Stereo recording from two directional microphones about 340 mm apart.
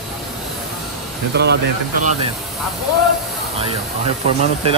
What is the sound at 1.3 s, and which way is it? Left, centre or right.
Speech, right.